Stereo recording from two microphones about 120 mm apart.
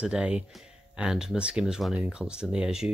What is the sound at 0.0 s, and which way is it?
Speech, 10° right (ahead or behind).